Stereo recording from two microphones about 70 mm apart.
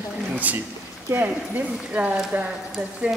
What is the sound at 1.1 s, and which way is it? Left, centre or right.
Speech, right.